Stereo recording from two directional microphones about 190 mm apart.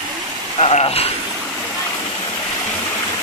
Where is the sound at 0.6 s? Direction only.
30° left (ahead or behind).